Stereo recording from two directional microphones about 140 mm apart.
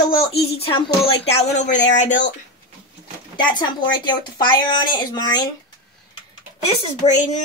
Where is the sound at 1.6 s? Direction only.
60° left (ahead or behind).